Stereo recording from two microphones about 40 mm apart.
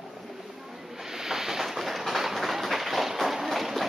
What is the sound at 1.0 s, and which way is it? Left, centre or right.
Run, centre.